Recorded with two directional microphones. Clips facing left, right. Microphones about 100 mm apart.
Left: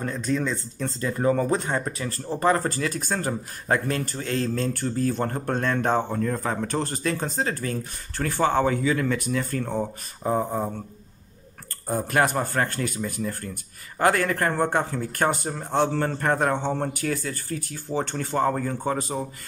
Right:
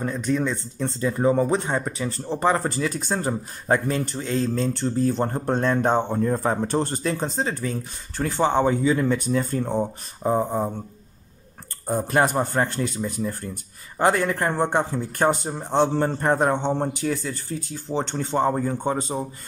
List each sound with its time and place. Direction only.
0.0 s speech: 10° right (ahead or behind)
10.2 s speech: 10° right (ahead or behind)
12.1 s speech: 20° right (ahead or behind)